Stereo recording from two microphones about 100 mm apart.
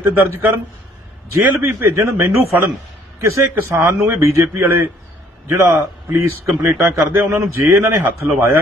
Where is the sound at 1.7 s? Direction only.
30° right (ahead or behind).